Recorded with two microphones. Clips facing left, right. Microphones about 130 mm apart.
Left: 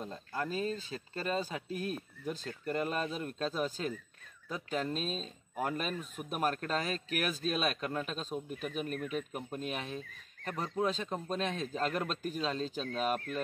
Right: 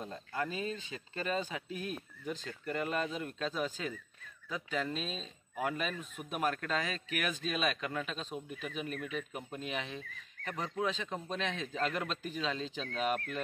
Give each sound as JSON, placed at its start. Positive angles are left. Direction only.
{"t": 0.0, "sound": "speech", "side_deg": 5}
{"t": 0.5, "sound": "a man's voice", "side_deg": 35}
{"t": 4.6, "sound": "a man's voice", "side_deg": 40}